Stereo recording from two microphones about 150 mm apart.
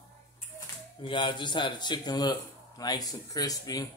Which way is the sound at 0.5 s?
30° left (ahead or behind).